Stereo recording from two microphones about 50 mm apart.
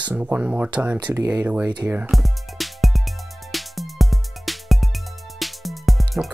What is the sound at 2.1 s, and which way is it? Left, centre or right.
Music, centre.